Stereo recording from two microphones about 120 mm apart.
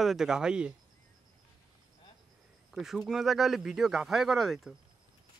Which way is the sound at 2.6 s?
Centre (ahead or behind).